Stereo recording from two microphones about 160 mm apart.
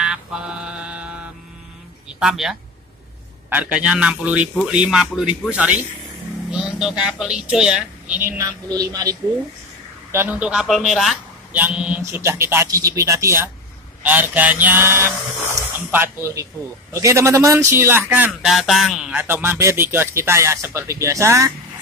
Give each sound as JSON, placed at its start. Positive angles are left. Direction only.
{"t": 0.0, "sound": "mantra", "side_deg": -5}
{"t": 2.1, "sound": "speech", "side_deg": 0}
{"t": 10.1, "sound": "a man's voice", "side_deg": -10}